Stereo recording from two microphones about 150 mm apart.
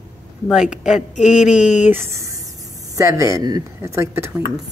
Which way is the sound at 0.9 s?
50° left (ahead or behind).